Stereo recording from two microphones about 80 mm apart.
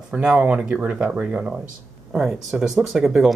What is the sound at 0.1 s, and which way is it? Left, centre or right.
Speech, centre.